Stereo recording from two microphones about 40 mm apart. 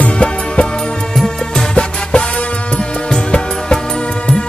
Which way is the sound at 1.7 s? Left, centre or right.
Left.